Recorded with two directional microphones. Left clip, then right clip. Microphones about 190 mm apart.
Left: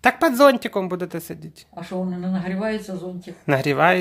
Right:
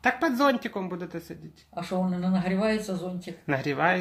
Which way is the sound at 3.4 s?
40° left (ahead or behind).